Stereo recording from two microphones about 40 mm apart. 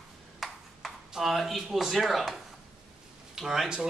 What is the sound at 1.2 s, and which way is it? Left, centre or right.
A man's voice, centre.